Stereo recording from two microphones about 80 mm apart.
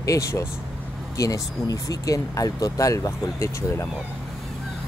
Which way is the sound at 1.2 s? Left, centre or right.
Left.